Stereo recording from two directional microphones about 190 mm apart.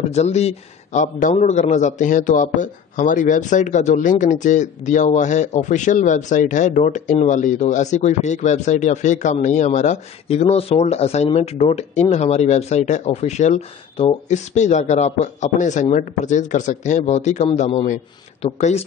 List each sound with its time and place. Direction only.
0.1 s speech: 35° left (ahead or behind)